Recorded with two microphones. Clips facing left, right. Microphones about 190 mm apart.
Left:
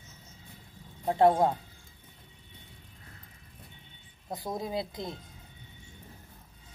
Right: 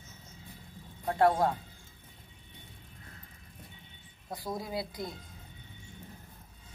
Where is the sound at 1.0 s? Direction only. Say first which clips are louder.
Left 3 dB; 20° left (ahead or behind).